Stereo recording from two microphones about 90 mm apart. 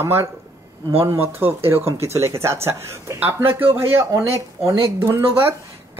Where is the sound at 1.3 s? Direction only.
25° right (ahead or behind).